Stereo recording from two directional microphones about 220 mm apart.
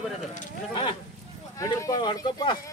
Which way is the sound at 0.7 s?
20° left (ahead or behind).